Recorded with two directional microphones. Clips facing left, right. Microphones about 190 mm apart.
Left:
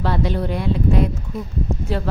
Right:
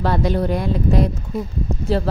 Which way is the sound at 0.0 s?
45° right (ahead or behind).